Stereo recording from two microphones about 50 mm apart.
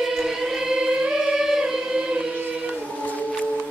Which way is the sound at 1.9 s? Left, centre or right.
Right.